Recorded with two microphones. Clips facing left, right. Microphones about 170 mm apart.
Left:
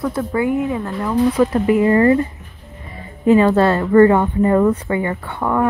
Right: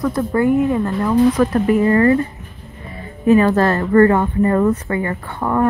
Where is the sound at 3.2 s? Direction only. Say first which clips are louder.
Left 1 dB; 20° left (ahead or behind).